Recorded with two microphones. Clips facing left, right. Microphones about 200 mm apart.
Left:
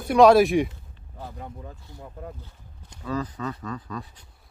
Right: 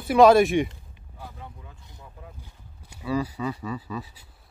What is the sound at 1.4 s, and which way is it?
Speech, 40° left (ahead or behind).